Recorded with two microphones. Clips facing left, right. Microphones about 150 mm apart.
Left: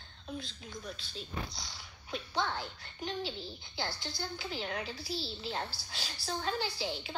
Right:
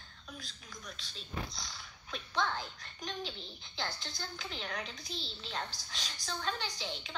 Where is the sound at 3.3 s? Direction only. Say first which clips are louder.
Left 5 dB; 30° left (ahead or behind).